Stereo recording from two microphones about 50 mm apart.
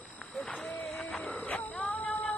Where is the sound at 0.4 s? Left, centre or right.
Left.